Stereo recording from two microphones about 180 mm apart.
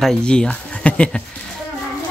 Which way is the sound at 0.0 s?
5° left (ahead or behind).